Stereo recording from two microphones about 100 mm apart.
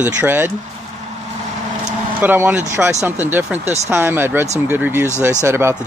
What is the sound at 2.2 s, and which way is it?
Speech, 20° right (ahead or behind).